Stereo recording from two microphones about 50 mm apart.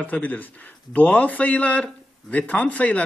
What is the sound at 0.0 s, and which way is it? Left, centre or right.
Speech, left.